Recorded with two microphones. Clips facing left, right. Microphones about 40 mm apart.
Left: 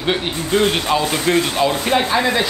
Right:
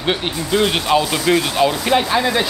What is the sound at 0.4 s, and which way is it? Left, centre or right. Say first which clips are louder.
Speech: left 1 dB; left.